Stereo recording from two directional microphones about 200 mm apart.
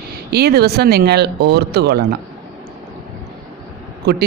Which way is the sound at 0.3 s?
55° right (ahead or behind).